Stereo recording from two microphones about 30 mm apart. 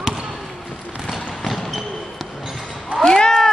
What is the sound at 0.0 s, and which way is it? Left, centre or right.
Basketball bounce, centre.